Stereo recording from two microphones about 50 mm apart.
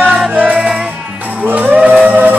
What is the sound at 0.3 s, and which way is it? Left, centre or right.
Music, right.